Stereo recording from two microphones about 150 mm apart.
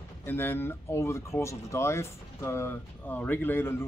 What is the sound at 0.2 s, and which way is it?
Speech, 15° left (ahead or behind).